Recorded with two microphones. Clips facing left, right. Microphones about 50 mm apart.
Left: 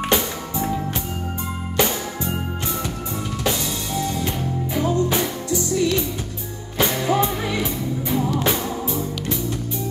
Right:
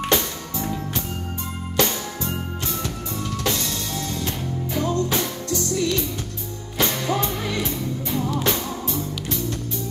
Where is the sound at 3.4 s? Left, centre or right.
Centre.